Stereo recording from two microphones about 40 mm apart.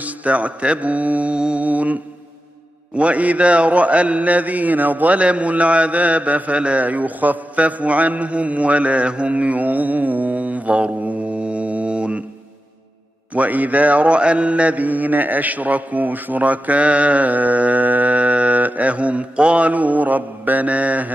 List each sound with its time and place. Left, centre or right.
0.0 s mantra: right
3.0 s mantra: right
13.3 s mantra: right